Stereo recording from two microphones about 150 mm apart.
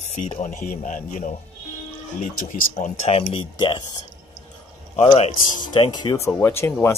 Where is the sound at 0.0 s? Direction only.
45° left (ahead or behind).